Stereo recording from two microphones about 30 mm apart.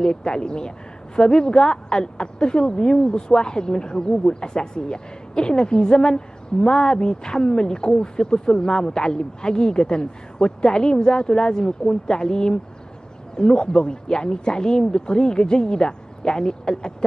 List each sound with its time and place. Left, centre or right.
0.0 s a woman's voice: left